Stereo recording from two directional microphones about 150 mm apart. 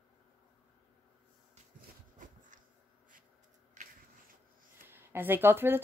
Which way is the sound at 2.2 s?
60° right (ahead or behind).